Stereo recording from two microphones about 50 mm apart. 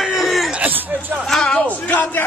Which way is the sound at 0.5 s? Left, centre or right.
Right.